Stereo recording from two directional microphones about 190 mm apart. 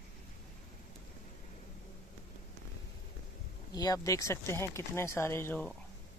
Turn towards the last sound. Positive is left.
turn(degrees=10)  # may be behind; listen again after turning